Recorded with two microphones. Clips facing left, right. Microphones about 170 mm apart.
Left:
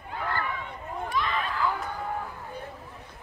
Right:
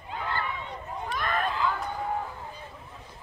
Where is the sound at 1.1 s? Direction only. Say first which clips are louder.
Even; 50° right (ahead or behind).